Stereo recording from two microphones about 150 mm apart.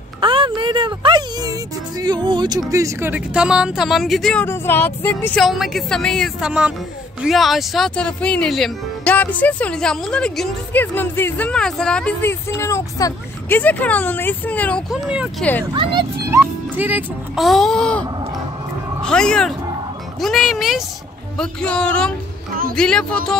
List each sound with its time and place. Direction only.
0.2 s speech: 35° right (ahead or behind); by 4.5 s 5° left (ahead or behind)
4.5 s speech: 15° left (ahead or behind)
5.4 s speech: centre (ahead or behind)
14.9 s speech: 5° right (ahead or behind)
15.7 s speech: 30° right (ahead or behind)
16.7 s speech: 10° right (ahead or behind)
17.4 s speech: centre (ahead or behind)
19.0 s speech: 5° left (ahead or behind)